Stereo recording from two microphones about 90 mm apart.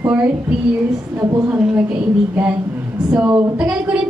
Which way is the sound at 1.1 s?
30° right (ahead or behind).